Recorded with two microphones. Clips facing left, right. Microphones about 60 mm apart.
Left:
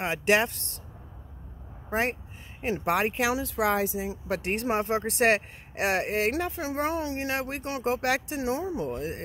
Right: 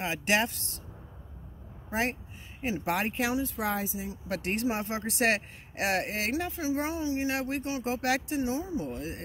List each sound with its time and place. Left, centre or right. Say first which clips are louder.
0.0 s speech: left 4 dB; left
1.9 s speech: left 3 dB; left
3.3 s speech: left 4 dB; left
4.5 s speech: left 4 dB; left
6.4 s speech: left 2 dB; left
7.3 s speech: even; left
8.4 s speech: left 1 dB; left
8.8 s speech: left 4 dB; left